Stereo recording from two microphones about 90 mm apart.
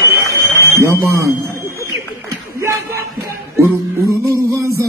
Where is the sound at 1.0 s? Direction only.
35° right (ahead or behind).